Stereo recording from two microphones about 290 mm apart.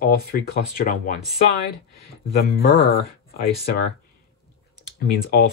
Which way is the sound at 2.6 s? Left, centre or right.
Left.